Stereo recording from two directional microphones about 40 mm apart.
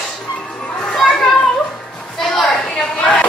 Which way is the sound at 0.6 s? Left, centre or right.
Left.